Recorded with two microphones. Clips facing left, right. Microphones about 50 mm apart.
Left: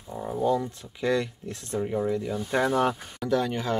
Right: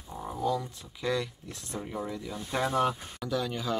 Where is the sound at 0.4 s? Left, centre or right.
Left.